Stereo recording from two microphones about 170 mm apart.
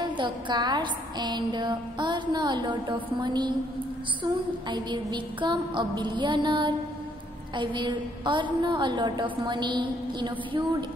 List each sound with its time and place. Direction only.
0.0 s a woman's voice: 25° right (ahead or behind)